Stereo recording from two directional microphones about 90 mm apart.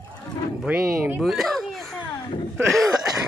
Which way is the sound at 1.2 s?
Centre (ahead or behind).